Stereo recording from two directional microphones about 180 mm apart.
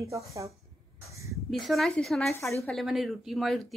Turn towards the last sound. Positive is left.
turn(degrees=0)  # may be behind; listen again after turning